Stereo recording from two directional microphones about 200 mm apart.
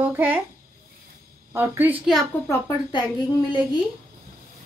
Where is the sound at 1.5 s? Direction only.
10° right (ahead or behind).